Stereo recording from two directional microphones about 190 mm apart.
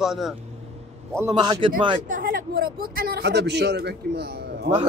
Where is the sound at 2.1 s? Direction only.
45° right (ahead or behind).